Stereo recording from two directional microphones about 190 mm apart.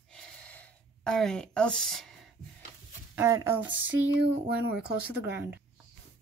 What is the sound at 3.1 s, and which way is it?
Speech, 15° right (ahead or behind).